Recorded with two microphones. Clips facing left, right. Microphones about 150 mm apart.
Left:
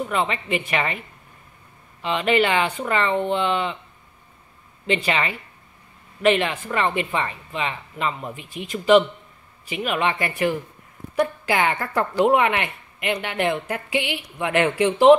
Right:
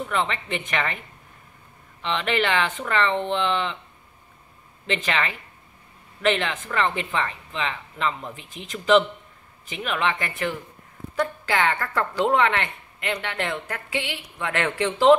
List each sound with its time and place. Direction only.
0.1 s a woman's voice: 5° left (ahead or behind)
4.8 s a woman's voice: 10° left (ahead or behind)